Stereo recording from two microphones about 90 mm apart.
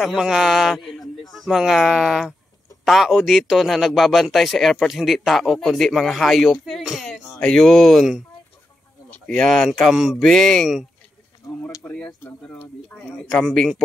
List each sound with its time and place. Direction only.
0.0 s a man's voice: 5° right (ahead or behind)
9.2 s a man's voice: 5° left (ahead or behind)
11.4 s a sound: 40° left (ahead or behind)
11.8 s speech: 15° left (ahead or behind)
13.3 s a man's voice: centre (ahead or behind)